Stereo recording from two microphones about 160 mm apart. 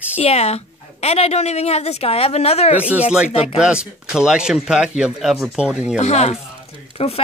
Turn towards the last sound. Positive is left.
turn(degrees=35)  # may be behind; listen again after turning